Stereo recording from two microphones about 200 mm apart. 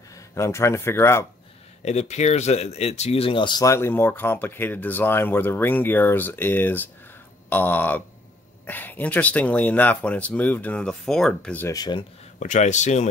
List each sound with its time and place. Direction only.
0.3 s speech: 15° left (ahead or behind)
1.9 s speech: 35° left (ahead or behind); by 12.0 s 20° left (ahead or behind)
12.4 s a man's voice: 40° left (ahead or behind)